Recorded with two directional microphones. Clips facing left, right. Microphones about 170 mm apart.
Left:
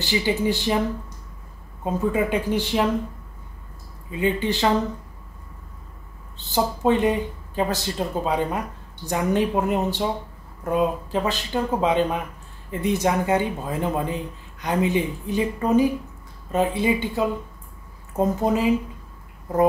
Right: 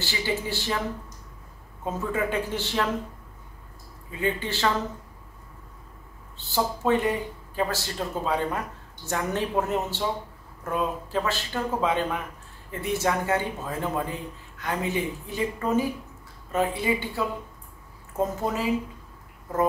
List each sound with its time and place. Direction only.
0.0 s speech: 15° left (ahead or behind)
1.9 s speech: 15° left (ahead or behind)
4.1 s speech: 15° left (ahead or behind)
6.3 s speech: 20° left (ahead or behind)